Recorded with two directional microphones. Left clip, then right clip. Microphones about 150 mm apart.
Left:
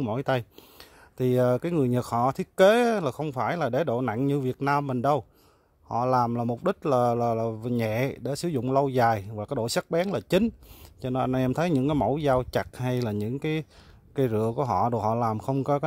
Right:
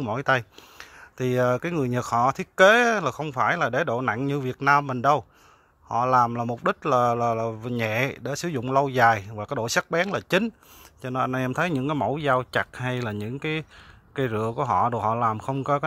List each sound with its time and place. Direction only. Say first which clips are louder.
0.0 s speech: right 4 dB; 50° left (ahead or behind)
5.9 s speech: right 4 dB; 40° left (ahead or behind); by 15.8 s 55° left (ahead or behind)